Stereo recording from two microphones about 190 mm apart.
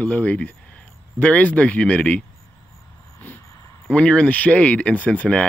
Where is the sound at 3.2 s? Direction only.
10° left (ahead or behind).